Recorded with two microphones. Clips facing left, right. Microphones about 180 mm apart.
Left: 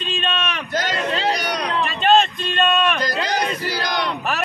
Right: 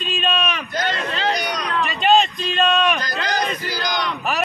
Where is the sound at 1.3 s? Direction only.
35° left (ahead or behind).